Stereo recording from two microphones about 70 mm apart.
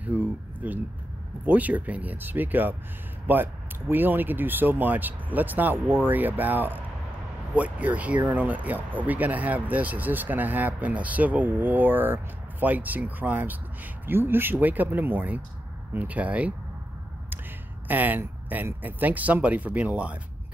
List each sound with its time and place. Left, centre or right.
0.0 s a sound: right
1.4 s speech: right
17.8 s speech: right